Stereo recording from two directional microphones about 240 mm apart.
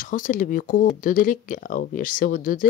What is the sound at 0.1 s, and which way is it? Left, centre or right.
Speech, left.